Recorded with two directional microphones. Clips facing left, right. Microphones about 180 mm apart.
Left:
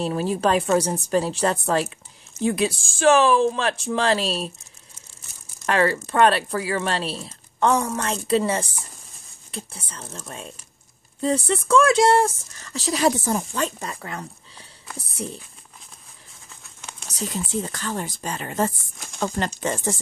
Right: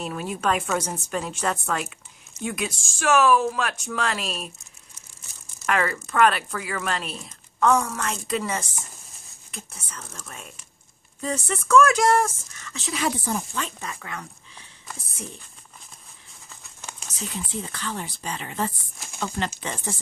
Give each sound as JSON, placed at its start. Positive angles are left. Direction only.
{"t": 0.0, "sound": "speech", "side_deg": 30}
{"t": 5.7, "sound": "speech", "side_deg": 30}
{"t": 17.1, "sound": "speech", "side_deg": 40}